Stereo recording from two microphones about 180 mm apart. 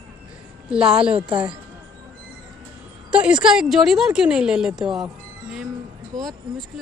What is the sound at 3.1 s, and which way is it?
Speech, 5° right (ahead or behind).